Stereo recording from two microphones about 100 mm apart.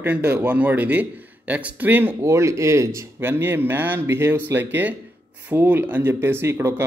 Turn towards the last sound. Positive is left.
turn(degrees=-25)  # may be behind; listen again after turning